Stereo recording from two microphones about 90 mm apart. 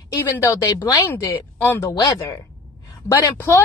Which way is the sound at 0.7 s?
45° left (ahead or behind).